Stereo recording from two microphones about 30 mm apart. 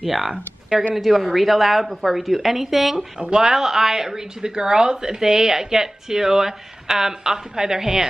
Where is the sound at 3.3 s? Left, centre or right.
Centre.